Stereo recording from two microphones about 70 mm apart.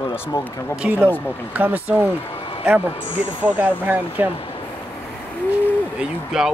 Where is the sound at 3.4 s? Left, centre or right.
Right.